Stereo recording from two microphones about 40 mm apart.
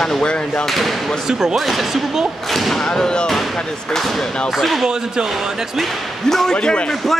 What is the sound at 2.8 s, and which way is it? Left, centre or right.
Speech, centre.